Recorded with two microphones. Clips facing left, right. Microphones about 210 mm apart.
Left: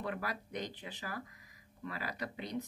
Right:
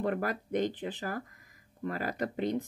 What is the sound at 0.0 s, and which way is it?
Speech, 50° right (ahead or behind).